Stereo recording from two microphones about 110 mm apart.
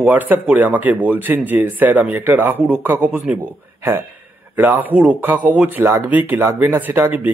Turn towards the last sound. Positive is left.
turn(degrees=-15)  # may be behind; listen again after turning